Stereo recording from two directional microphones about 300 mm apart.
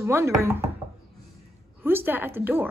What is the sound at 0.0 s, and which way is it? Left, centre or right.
Speech, centre.